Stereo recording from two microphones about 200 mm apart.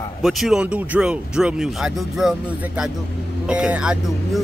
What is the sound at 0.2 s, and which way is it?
A man's voice, centre (ahead or behind).